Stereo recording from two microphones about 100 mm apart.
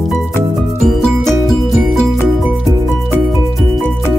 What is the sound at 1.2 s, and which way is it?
Music, 5° left (ahead or behind).